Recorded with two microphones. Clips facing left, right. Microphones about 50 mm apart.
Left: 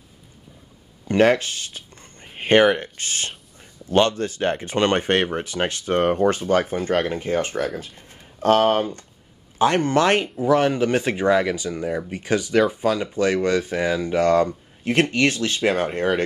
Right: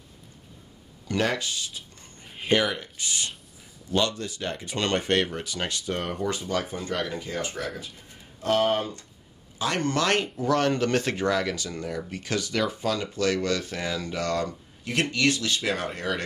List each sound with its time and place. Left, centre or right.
1.0 s a sound: left
3.9 s speech: left
9.6 s speech: left
10.2 s speech: centre; by 16.2 s left